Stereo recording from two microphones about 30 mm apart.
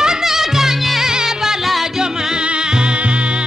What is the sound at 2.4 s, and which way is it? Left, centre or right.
Music, right.